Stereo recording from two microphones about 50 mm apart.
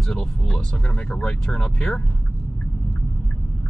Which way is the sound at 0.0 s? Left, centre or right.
Centre.